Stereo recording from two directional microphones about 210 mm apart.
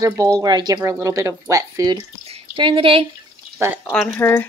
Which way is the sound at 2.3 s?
25° right (ahead or behind).